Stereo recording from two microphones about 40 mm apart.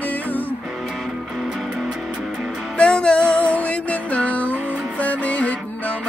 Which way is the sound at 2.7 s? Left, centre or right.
Left.